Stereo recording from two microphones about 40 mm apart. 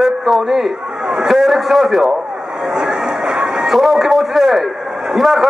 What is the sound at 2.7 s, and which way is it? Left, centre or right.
Vehicle, centre.